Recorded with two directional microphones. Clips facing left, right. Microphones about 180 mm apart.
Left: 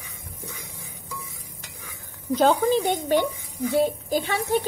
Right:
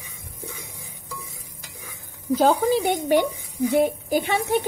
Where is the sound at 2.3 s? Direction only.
5° right (ahead or behind).